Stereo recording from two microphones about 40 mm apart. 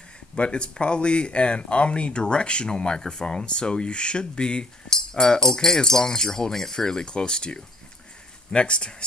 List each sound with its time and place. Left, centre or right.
0.4 s speech: left